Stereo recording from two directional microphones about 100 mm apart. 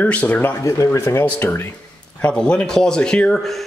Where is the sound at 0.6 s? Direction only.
35° left (ahead or behind).